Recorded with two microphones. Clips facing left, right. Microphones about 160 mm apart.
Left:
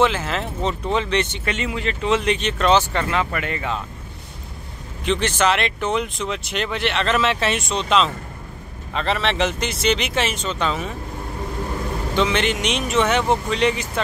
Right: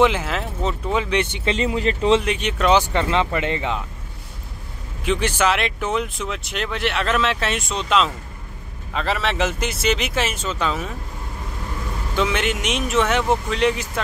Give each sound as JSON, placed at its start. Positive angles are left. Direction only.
{"t": 0.0, "sound": "speech", "side_deg": -10}
{"t": 1.4, "sound": "speech", "side_deg": -30}
{"t": 2.2, "sound": "speech", "side_deg": -10}
{"t": 5.0, "sound": "speech", "side_deg": -10}
{"t": 12.2, "sound": "speech", "side_deg": -5}